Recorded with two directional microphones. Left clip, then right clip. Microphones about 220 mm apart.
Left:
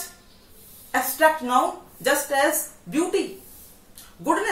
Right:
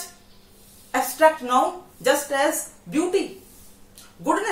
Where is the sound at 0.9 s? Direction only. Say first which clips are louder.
Right 1 dB; 10° right (ahead or behind).